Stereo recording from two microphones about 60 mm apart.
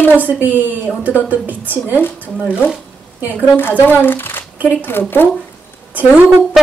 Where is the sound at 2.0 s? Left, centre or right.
Left.